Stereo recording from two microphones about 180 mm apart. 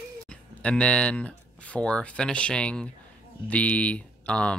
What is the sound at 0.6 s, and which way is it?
Speech, 5° left (ahead or behind).